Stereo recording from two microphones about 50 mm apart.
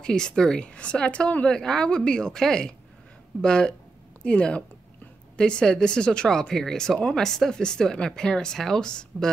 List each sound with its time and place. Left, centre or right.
0.0 s speech: centre